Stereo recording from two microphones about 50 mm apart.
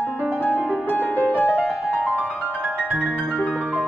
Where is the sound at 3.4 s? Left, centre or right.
Centre.